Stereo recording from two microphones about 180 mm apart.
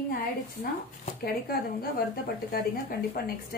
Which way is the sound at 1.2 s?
55° left (ahead or behind).